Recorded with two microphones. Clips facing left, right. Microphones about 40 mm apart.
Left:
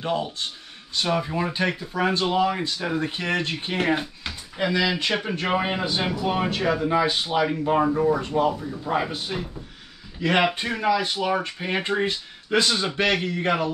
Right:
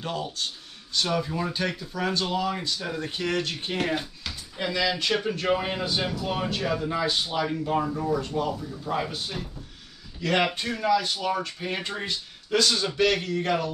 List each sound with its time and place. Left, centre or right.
0.0 s speech: left